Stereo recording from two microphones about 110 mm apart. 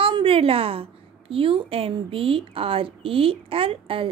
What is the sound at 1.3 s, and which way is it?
Speech, 55° right (ahead or behind).